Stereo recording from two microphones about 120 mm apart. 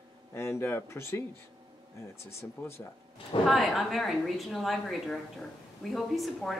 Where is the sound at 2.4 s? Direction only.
20° left (ahead or behind).